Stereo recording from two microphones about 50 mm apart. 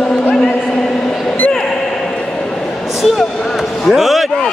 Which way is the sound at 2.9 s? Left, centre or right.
Centre.